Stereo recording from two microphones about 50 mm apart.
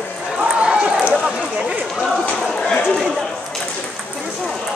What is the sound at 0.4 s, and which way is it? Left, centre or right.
Run, right.